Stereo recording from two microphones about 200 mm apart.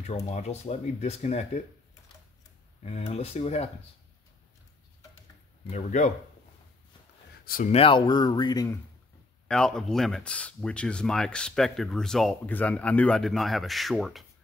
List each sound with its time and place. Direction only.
0.0 s speech: 35° left (ahead or behind)
2.8 s speech: 35° left (ahead or behind)
5.7 s speech: 35° left (ahead or behind)
7.4 s speech: 45° left (ahead or behind)
7.7 s speech: 25° left (ahead or behind)
9.5 s speech: 5° left (ahead or behind)